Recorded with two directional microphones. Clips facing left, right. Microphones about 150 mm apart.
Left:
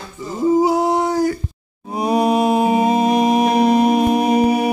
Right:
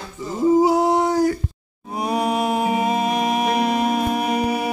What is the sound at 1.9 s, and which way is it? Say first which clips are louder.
Music: left 5 dB; 25° left (ahead or behind).